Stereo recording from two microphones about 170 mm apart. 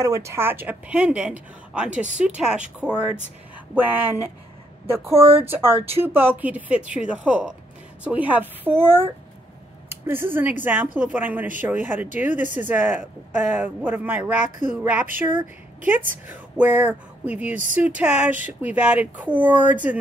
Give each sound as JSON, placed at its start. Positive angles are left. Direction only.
{"t": 0.0, "sound": "speech", "side_deg": -20}
{"t": 5.1, "sound": "speech", "side_deg": -35}
{"t": 5.9, "sound": "speech", "side_deg": -10}